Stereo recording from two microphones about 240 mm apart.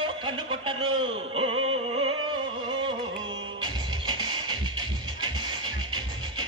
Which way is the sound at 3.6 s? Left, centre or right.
Centre.